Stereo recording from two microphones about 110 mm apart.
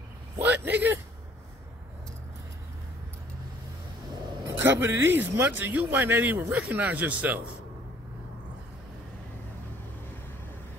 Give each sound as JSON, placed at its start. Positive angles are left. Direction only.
{"t": 0.4, "sound": "a man's voice", "side_deg": -15}
{"t": 4.5, "sound": "a man's voice", "side_deg": -25}